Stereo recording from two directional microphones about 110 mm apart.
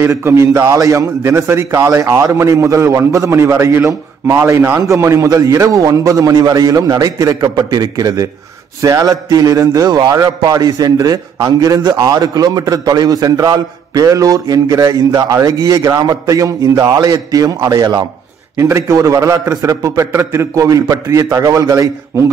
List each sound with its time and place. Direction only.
0.0 s a man's voice: 20° right (ahead or behind)